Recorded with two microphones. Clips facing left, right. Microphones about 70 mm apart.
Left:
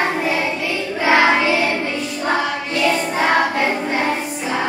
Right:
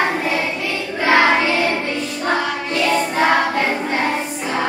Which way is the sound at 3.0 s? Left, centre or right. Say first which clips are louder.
Right 1 dB; centre.